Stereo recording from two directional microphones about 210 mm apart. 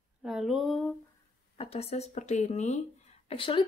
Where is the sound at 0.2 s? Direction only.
Centre (ahead or behind).